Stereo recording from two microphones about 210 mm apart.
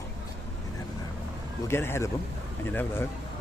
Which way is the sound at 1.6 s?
10° left (ahead or behind).